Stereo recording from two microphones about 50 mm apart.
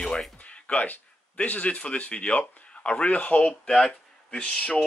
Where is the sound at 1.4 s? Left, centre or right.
Left.